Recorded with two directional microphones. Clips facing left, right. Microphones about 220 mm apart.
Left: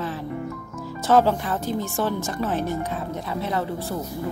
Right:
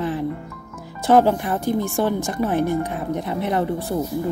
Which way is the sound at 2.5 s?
55° right (ahead or behind).